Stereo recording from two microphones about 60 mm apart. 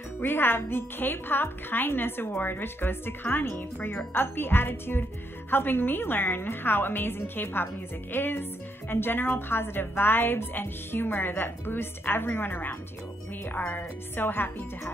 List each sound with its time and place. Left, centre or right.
0.2 s a woman's voice: left